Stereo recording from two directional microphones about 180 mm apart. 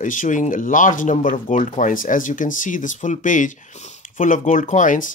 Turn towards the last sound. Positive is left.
turn(degrees=45)  # may be behind; listen again after turning